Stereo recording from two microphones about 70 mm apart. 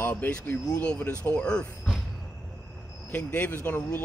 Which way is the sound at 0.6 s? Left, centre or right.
Centre.